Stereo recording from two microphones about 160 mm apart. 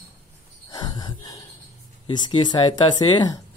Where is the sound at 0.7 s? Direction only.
25° left (ahead or behind).